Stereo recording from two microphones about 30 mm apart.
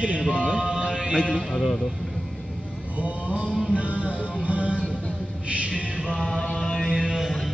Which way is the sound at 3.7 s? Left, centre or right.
Right.